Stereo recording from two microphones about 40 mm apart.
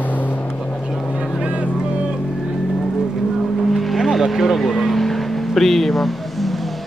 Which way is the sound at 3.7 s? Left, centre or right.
Centre.